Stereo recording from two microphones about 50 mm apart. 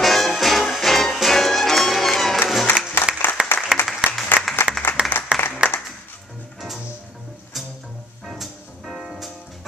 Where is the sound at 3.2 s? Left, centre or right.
Left.